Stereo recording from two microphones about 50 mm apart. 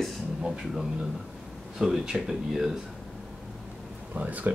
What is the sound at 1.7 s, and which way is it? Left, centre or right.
Speech, centre.